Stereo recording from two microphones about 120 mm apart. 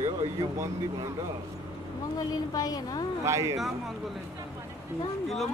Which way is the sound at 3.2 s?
25° right (ahead or behind).